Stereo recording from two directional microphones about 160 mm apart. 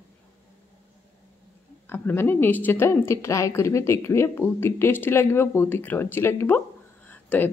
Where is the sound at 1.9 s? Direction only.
15° left (ahead or behind).